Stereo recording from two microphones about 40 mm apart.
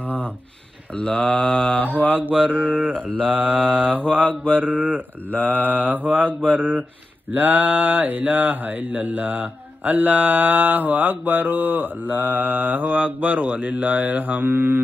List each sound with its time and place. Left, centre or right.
0.0 s a sound: left
0.9 s mantra: left
2.5 s mantra: right
4.2 s mantra: left
4.6 s mantra: right